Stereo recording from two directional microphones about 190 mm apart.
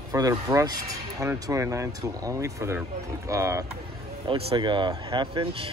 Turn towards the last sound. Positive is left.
turn(degrees=-30)  # may be behind; listen again after turning